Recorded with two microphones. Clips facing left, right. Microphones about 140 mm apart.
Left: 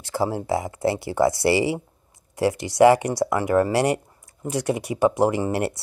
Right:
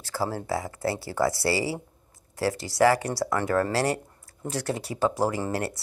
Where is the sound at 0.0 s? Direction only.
20° left (ahead or behind).